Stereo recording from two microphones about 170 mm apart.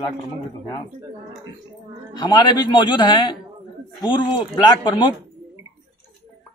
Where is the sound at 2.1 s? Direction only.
25° left (ahead or behind).